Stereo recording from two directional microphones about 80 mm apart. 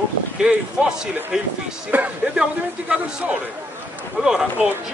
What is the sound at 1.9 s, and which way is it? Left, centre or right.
Speech, centre.